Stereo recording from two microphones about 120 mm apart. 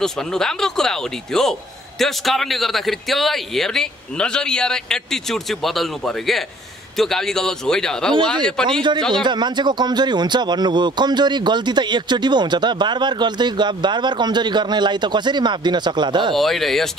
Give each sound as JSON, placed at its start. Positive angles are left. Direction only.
{"t": 0.0, "sound": "a man's voice", "side_deg": 5}
{"t": 9.2, "sound": "speech", "side_deg": -40}
{"t": 16.3, "sound": "a man's voice", "side_deg": 0}